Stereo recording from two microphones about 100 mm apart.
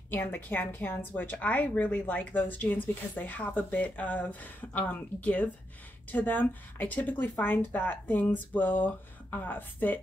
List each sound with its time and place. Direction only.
0.1 s a woman's voice: 20° left (ahead or behind)